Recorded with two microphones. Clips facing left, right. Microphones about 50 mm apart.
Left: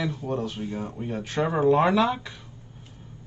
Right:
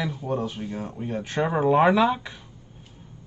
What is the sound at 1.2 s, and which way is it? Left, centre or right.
Speech, centre.